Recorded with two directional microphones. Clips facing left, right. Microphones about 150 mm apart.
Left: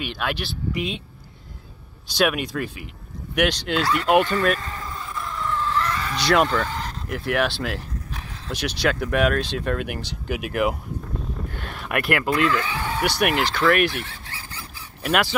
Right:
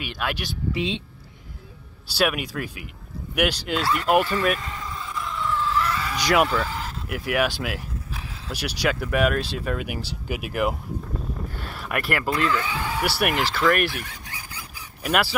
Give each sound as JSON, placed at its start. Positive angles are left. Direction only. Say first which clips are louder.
{"t": 0.0, "sound": "speech", "louder": "left 2 dB", "side_deg": -5}
{"t": 0.7, "sound": "a woman's voice", "louder": "right 2 dB", "side_deg": -30}
{"t": 2.1, "sound": "speech", "louder": "left 2 dB", "side_deg": -5}
{"t": 13.9, "sound": "a sound", "louder": "left 2 dB", "side_deg": -15}